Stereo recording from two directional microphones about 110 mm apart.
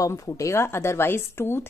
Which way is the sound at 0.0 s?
30° left (ahead or behind).